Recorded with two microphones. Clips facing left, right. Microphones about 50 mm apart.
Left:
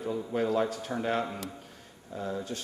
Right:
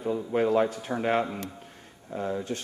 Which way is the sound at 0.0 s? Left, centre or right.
Right.